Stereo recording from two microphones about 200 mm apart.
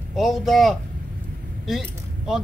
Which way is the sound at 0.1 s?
Centre (ahead or behind).